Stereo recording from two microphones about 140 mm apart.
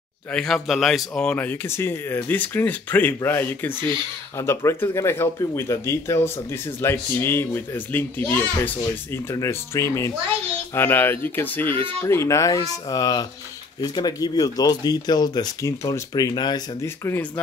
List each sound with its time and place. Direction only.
0.3 s speech: 5° left (ahead or behind); by 16.6 s 30° left (ahead or behind)
16.8 s speech: 15° left (ahead or behind)